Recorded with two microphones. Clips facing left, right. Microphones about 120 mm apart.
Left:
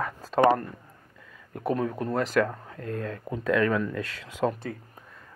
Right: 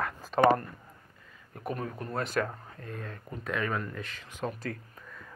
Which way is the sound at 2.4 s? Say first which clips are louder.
Left 6 dB; 85° left.